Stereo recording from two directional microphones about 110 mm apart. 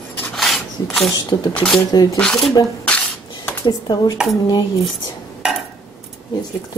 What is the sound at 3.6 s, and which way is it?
Speech, 40° left (ahead or behind).